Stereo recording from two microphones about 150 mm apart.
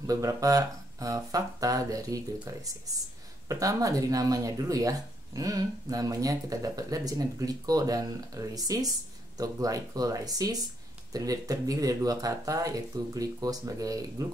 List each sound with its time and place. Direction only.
0.0 s speech: 20° right (ahead or behind)
3.4 s speech: 20° right (ahead or behind)